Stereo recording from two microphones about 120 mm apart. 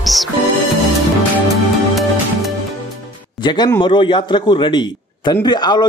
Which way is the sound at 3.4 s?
40° left (ahead or behind).